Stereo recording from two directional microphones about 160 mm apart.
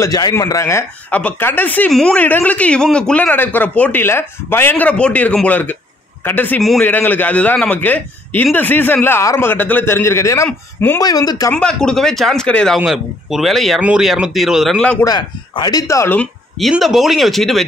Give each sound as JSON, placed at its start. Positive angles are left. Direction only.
{"t": 0.0, "sound": "speech", "side_deg": 20}
{"t": 11.5, "sound": "speech", "side_deg": 5}
{"t": 15.0, "sound": "speech", "side_deg": 25}
{"t": 16.2, "sound": "speech", "side_deg": 0}